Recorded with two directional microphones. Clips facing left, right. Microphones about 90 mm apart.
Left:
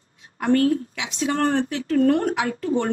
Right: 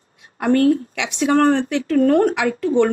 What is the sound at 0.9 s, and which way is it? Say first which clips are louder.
Speech: right 7 dB; 70° right (ahead or behind).